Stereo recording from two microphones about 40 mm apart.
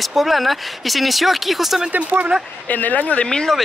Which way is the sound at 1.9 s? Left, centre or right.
Right.